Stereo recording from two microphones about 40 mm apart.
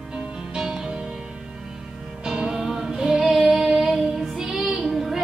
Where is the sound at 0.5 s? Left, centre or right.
Centre.